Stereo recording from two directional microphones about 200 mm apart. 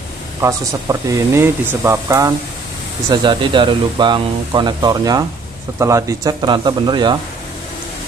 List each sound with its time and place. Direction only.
0.4 s speech: 15° right (ahead or behind)